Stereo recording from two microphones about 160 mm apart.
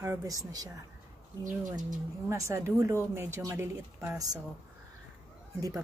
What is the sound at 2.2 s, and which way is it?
A woman's voice, 20° right (ahead or behind).